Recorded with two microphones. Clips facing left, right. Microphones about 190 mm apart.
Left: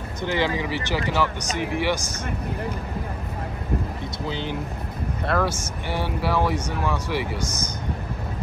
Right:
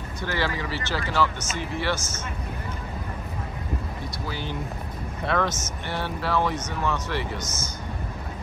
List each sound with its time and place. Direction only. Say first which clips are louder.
0.2 s speech: left 4 dB; 20° left (ahead or behind)
4.3 s speech: left 5 dB; 20° left (ahead or behind)
5.2 s speech: left 1 dB; 5° left (ahead or behind)